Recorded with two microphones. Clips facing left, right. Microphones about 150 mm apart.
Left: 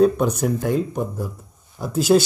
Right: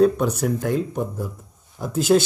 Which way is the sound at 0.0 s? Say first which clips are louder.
Left 1 dB; 15° left (ahead or behind).